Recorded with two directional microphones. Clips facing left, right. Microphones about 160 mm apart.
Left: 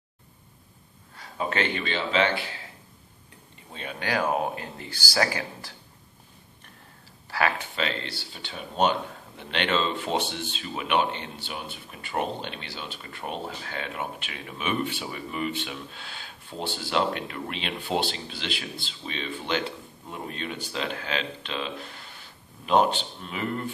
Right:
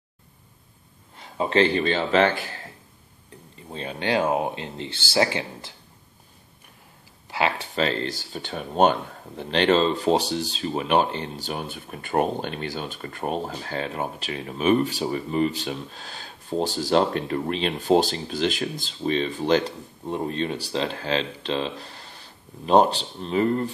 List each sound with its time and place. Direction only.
1.1 s speech: 25° right (ahead or behind); by 2.4 s 45° right (ahead or behind)
3.7 s speech: 30° right (ahead or behind)
7.2 s speech: 20° right (ahead or behind)
7.7 s speech: 40° right (ahead or behind)